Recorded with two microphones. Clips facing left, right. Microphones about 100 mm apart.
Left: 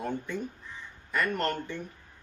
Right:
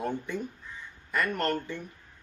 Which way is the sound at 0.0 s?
10° right (ahead or behind).